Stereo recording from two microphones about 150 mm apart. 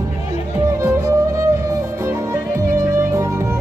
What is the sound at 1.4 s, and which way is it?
Music, 20° right (ahead or behind).